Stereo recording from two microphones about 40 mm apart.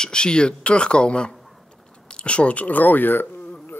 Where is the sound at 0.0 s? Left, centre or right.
Left.